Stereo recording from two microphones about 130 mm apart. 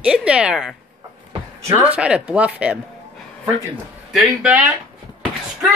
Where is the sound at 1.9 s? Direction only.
10° right (ahead or behind).